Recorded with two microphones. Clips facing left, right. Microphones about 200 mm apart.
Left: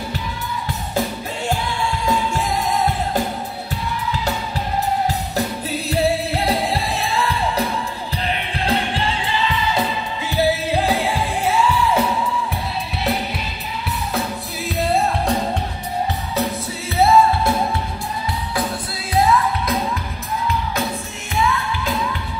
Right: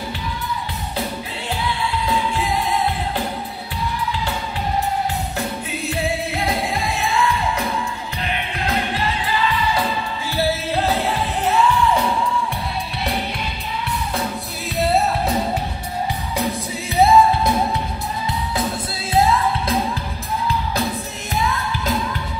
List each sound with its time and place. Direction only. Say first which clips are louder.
5.7 s music: left 6 dB; 35° left (ahead or behind)
10.3 s music: left 3 dB; 15° left (ahead or behind)
16.9 s music: right 1 dB; 15° right (ahead or behind)
19.1 s music: even; 30° right (ahead or behind)
21.4 s music: left 3 dB; 40° right (ahead or behind)